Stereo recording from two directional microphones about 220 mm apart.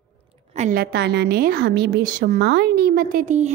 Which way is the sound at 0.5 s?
35° right (ahead or behind).